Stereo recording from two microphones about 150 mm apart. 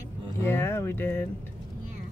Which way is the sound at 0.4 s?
15° left (ahead or behind).